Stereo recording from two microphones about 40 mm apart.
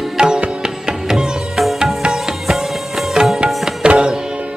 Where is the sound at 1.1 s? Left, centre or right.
Centre.